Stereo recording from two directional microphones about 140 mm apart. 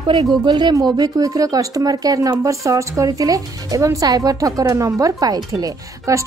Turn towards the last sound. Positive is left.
turn(degrees=-25)  # may be behind; listen again after turning